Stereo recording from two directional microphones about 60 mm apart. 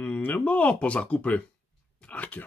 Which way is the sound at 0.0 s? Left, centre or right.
Left.